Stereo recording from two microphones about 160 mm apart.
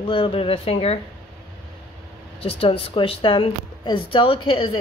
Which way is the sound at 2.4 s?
35° left (ahead or behind).